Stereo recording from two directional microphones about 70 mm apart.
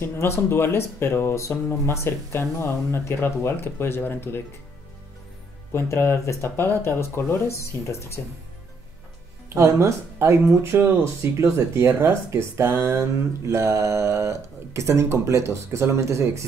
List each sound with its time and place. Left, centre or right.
0.0 s speech: left
5.7 s speech: left
9.5 s speech: right